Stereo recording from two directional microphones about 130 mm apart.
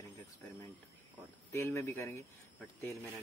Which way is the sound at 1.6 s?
20° left (ahead or behind).